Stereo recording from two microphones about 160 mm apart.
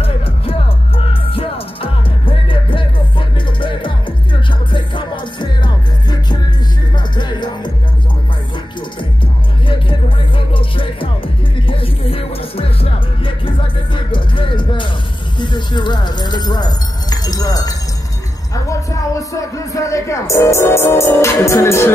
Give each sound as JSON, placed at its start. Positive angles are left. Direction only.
{"t": 0.0, "sound": "music", "side_deg": 35}
{"t": 9.7, "sound": "music", "side_deg": 30}
{"t": 15.3, "sound": "a sound", "side_deg": 30}
{"t": 18.5, "sound": "music", "side_deg": 20}